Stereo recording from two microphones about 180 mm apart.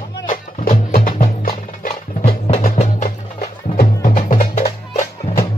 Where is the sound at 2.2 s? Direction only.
35° left (ahead or behind).